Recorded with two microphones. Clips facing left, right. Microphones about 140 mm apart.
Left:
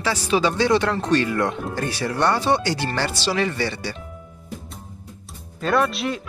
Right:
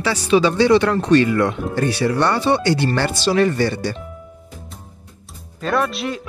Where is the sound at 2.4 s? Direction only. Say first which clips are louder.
Right 4 dB; 60° right (ahead or behind).